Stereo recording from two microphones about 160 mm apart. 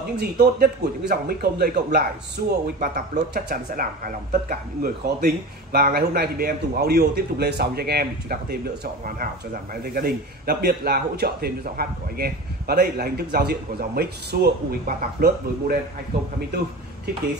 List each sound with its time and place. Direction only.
0.2 s speech: 90° right; by 8.5 s 75° right (ahead or behind)
9.0 s a man's voice: 60° right (ahead or behind)